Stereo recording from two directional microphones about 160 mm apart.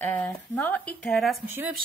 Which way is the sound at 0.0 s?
10° left (ahead or behind).